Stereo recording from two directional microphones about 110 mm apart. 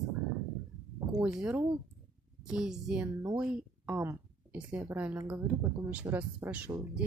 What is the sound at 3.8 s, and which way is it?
A woman's voice, 25° right (ahead or behind).